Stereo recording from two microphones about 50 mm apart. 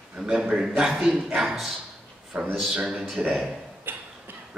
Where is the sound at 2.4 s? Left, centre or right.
Centre.